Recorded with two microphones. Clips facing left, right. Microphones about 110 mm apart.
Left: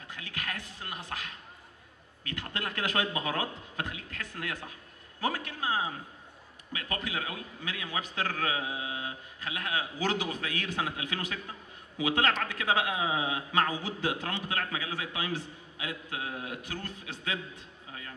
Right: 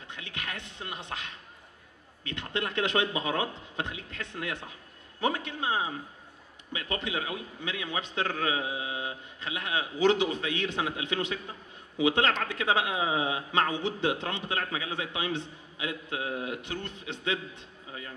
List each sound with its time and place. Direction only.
0.1 s a man's voice: 25° right (ahead or behind)